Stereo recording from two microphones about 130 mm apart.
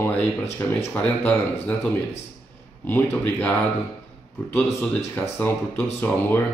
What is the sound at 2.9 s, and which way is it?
Speech, 15° left (ahead or behind).